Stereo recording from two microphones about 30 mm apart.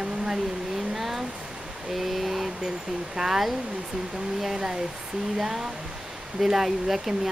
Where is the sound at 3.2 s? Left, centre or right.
Centre.